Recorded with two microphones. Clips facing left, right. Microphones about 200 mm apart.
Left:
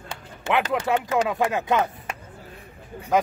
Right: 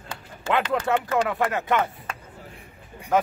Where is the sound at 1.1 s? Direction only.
15° left (ahead or behind).